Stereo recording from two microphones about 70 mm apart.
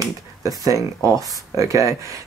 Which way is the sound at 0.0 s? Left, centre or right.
Right.